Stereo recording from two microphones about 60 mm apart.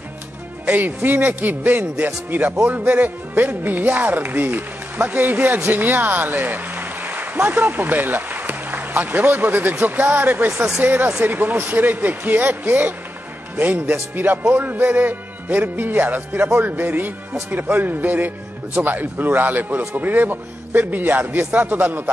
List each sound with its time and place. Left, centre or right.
0.7 s speech: right
10.5 s speech: centre
10.8 s a man's voice: right